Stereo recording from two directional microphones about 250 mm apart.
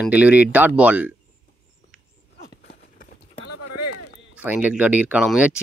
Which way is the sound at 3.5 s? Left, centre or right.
Left.